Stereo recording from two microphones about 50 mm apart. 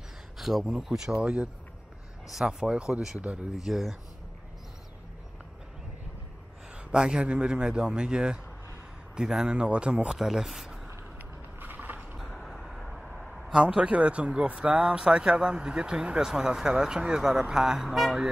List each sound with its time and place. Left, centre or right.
0.4 s speech: centre
1.2 s a man's voice: right
3.6 s speech: centre
6.9 s a man's voice: centre
11.6 s a sound: right
12.2 s a sound: centre
13.6 s a man's voice: centre
17.8 s mantra: centre